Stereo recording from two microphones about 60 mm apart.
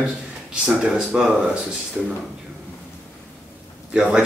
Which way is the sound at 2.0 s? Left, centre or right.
Right.